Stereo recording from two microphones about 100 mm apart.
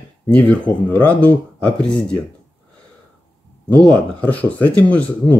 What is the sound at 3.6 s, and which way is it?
Speech, 15° left (ahead or behind).